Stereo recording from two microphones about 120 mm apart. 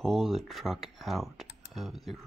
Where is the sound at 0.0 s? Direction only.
Centre (ahead or behind).